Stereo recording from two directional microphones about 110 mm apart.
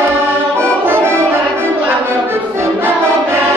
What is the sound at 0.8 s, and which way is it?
Music, 20° right (ahead or behind).